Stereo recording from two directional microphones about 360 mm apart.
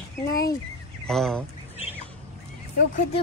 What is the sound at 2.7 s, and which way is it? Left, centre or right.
Speech, left.